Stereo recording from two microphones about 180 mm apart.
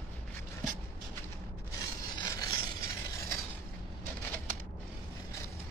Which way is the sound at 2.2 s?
20° left (ahead or behind).